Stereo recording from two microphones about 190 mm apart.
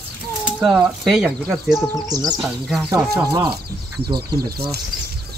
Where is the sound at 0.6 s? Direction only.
Centre (ahead or behind).